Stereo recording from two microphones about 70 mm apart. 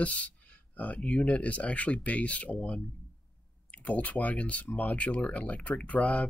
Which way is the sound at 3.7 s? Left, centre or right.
Left.